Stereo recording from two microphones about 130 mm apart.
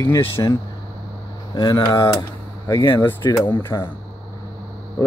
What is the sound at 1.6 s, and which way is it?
Speech, 30° left (ahead or behind).